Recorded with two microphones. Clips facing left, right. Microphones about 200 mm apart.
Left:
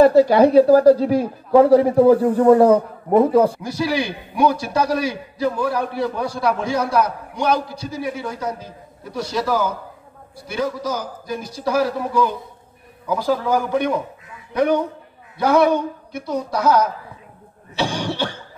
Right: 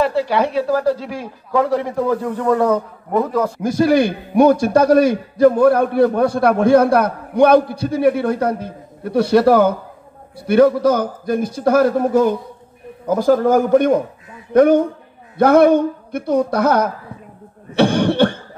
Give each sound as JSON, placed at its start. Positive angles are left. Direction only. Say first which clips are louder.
{"t": 0.0, "sound": "a man's voice", "louder": "left 6 dB", "side_deg": 40}
{"t": 3.6, "sound": "a man's voice", "louder": "right 8 dB", "side_deg": -50}